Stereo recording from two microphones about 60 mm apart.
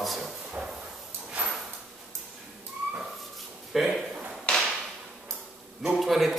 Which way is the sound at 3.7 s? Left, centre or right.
Centre.